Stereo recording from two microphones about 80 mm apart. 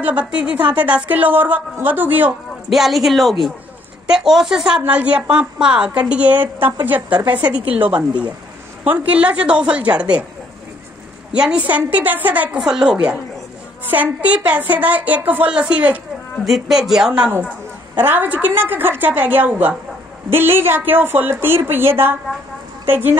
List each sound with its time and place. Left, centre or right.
0.0 s a woman's voice: centre
2.7 s a woman's voice: centre
11.3 s a woman's voice: centre
12.0 s a woman's voice: right
12.5 s a woman's voice: centre
16.4 s a woman's voice: centre
17.9 s a woman's voice: right